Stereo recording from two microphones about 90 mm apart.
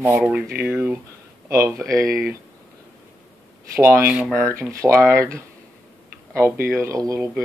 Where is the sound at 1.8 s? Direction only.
35° right (ahead or behind).